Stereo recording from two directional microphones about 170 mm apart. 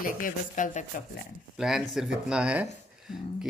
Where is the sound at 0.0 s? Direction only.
50° left (ahead or behind).